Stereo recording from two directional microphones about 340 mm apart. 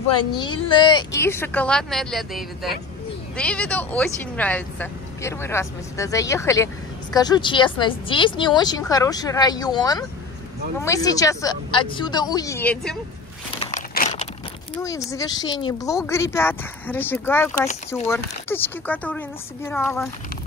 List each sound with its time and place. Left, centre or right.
0.3 s a woman's voice: centre
13.6 s biting: centre
14.8 s speech: centre